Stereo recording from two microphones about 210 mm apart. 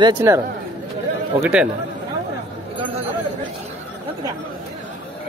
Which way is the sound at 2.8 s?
30° right (ahead or behind).